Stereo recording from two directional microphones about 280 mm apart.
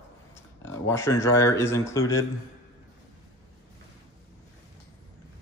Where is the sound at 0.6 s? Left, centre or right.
Centre.